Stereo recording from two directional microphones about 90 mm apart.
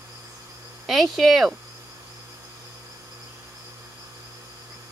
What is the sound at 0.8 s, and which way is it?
Speech, centre (ahead or behind).